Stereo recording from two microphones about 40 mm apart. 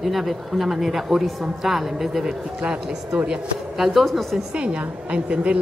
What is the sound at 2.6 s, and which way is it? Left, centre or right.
Speech, right.